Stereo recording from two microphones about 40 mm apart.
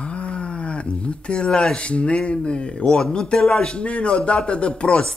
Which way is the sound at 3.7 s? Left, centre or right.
Left.